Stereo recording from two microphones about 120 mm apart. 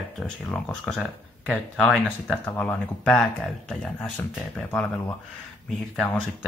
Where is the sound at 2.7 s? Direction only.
5° left (ahead or behind).